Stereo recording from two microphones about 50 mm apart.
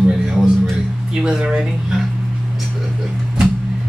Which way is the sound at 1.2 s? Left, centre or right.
Centre.